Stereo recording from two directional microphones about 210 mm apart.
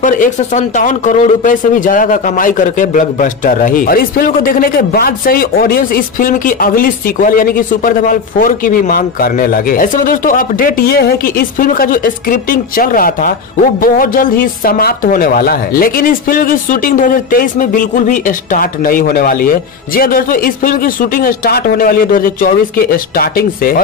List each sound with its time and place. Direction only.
0.0 s a woman's voice: 35° left (ahead or behind)